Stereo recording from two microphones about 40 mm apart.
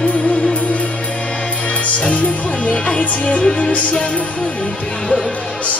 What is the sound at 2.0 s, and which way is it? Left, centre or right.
Music, left.